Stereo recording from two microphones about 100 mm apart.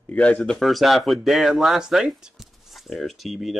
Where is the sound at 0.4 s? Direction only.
Centre (ahead or behind).